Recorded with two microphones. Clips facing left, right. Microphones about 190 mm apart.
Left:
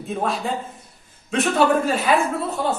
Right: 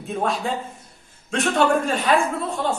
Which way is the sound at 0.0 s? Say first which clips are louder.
Even; centre (ahead or behind).